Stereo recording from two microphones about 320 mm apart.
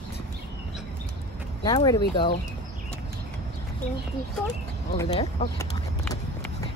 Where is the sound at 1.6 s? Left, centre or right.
Centre.